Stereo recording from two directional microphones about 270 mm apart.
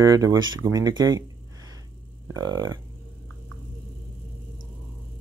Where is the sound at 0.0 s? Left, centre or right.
Centre.